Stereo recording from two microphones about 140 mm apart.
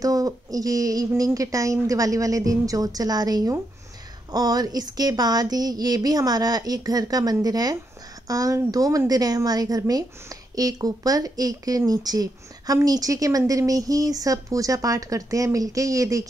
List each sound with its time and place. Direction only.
0.0 s speech: 25° right (ahead or behind)